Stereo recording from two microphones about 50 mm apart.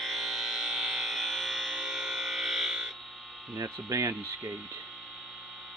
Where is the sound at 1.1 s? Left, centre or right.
Centre.